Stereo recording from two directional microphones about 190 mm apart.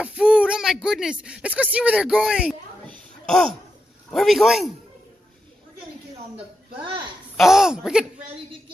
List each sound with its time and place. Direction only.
0.0 s speech: 5° right (ahead or behind)
4.1 s speech: centre (ahead or behind)
6.3 s speech: 25° right (ahead or behind)
7.3 s speech: centre (ahead or behind)